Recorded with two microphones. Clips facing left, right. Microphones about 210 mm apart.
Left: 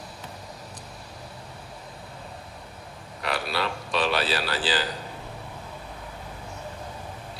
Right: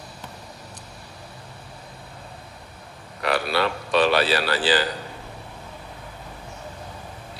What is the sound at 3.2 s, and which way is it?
A man's voice, 65° right (ahead or behind).